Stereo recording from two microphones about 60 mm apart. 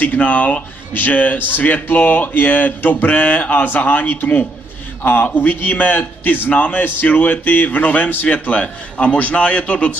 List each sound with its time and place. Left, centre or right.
0.0 s speech: left